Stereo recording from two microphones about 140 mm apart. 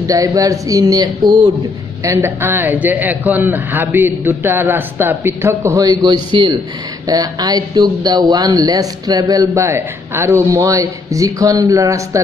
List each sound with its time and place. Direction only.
0.0 s a man's voice: 25° right (ahead or behind)